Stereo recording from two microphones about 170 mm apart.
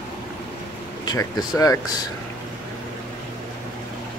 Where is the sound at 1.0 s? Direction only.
20° left (ahead or behind).